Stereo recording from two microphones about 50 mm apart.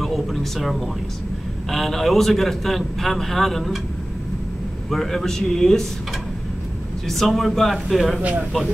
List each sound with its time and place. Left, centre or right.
0.0 s a sound: centre
1.7 s a man's voice: centre
4.9 s speech: centre
7.1 s a man's voice: centre
8.2 s speech: right